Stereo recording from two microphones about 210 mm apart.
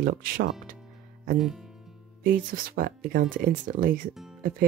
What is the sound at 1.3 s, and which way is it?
Speech, centre (ahead or behind).